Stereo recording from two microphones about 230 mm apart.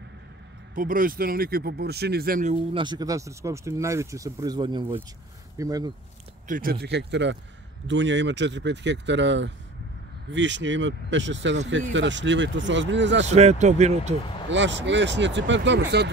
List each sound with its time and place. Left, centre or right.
0.7 s speech: right
2.8 s speech: centre
6.4 s speech: right
13.2 s speech: right
14.5 s speech: right